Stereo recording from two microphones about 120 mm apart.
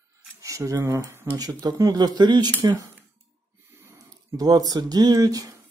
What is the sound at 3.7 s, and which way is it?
Speech, 20° right (ahead or behind).